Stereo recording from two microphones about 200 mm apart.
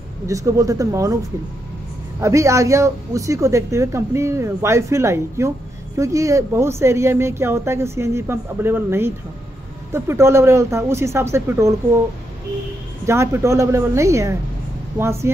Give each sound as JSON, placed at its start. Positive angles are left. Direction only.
{"t": 0.3, "sound": "speech", "side_deg": -15}
{"t": 2.1, "sound": "speech", "side_deg": -15}
{"t": 13.0, "sound": "speech", "side_deg": -15}